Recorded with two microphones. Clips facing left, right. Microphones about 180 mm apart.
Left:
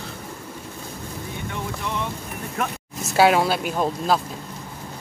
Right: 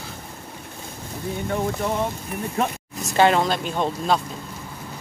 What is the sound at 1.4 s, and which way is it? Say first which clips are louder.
Rain: right 7 dB; 40° right (ahead or behind).